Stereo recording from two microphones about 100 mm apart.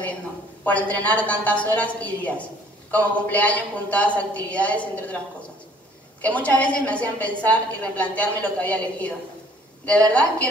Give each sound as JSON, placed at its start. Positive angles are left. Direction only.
{"t": 0.7, "sound": "a woman's voice", "side_deg": 15}
{"t": 6.2, "sound": "a woman's voice", "side_deg": 15}